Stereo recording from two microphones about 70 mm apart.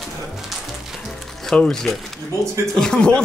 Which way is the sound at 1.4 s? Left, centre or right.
Centre.